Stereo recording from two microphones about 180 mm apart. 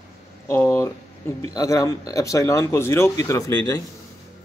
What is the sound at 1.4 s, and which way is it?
Speech, 20° left (ahead or behind).